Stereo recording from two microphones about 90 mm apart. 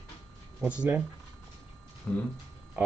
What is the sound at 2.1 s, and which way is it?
Speech, 20° left (ahead or behind).